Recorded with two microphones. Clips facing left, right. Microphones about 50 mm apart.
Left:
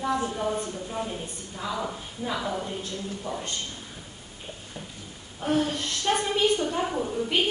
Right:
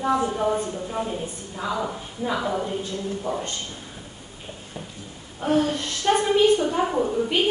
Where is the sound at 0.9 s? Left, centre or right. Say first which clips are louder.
Right 4 dB; centre.